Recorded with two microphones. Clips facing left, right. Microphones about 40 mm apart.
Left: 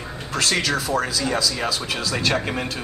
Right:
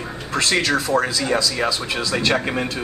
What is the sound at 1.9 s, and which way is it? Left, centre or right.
Speech, right.